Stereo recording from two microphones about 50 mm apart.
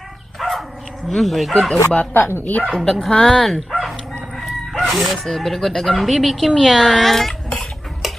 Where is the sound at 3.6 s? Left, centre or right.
Centre.